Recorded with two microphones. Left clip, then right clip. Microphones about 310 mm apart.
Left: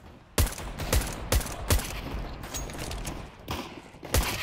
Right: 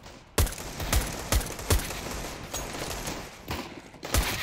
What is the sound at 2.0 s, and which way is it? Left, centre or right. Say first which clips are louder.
Fusillade: right 3 dB; right.